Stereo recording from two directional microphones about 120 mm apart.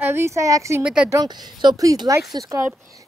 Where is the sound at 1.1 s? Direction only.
35° right (ahead or behind).